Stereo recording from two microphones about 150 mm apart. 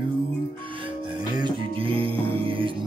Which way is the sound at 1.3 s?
35° right (ahead or behind).